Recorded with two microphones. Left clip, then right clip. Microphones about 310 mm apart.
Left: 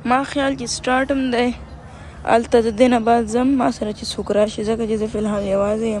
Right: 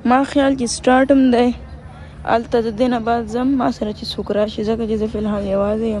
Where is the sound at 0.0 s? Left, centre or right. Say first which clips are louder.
Right 3 dB; centre.